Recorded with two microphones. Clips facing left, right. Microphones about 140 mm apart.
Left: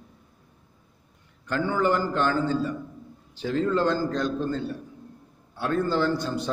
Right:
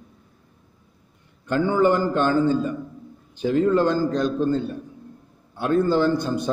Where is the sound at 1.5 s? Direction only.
20° right (ahead or behind).